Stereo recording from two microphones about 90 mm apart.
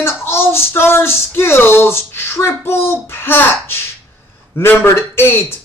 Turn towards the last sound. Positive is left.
turn(degrees=25)  # may be behind; listen again after turning